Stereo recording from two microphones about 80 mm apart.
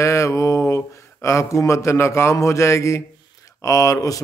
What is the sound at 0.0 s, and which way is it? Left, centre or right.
A man's voice, left.